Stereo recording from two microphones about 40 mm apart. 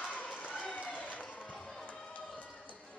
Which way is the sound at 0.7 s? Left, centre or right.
Left.